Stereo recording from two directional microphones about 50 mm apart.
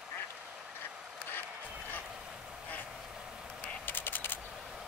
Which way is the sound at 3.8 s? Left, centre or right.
Left.